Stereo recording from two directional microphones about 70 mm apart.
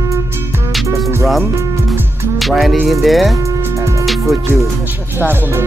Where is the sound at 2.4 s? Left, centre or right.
Centre.